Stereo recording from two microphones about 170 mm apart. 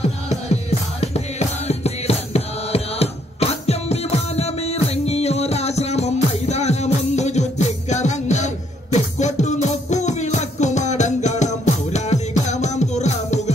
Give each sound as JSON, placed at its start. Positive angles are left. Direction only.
{"t": 0.0, "sound": "music", "side_deg": 40}